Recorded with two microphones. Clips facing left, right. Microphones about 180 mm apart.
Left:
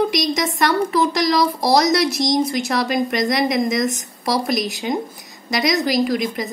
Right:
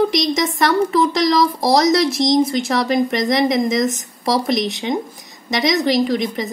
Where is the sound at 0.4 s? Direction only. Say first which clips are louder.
Right 3 dB; centre (ahead or behind).